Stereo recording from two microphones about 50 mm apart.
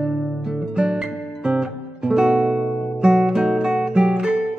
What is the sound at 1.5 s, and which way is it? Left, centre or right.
Guitar, centre.